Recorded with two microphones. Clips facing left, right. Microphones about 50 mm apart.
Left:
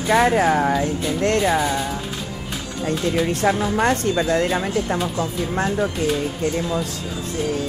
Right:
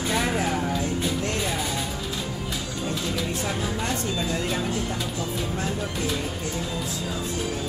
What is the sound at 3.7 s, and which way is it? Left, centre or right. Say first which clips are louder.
Speech: left 9 dB; left.